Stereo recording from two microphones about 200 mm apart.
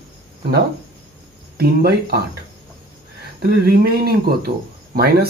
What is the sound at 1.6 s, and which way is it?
Speech, 50° right (ahead or behind).